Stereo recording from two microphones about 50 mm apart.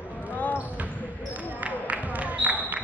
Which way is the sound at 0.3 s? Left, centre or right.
Left.